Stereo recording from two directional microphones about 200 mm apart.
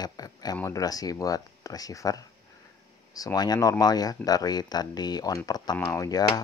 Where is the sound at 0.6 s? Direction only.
15° left (ahead or behind).